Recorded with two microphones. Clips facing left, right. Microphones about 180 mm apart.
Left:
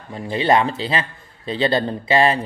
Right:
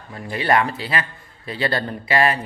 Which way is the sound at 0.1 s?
25° left (ahead or behind).